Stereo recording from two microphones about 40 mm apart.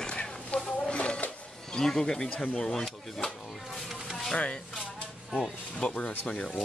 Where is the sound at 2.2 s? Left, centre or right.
Left.